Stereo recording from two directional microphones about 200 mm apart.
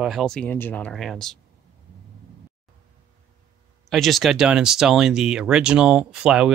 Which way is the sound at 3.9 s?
Centre (ahead or behind).